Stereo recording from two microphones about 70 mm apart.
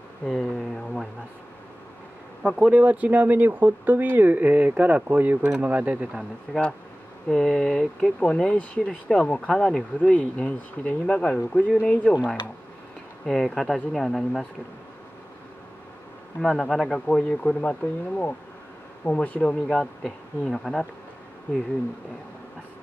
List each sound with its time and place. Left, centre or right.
0.2 s a sound: centre
2.4 s speech: centre
7.2 s speech: centre
9.9 s speech: centre
13.2 s speech: centre
16.3 s speech: centre
17.2 s speech: centre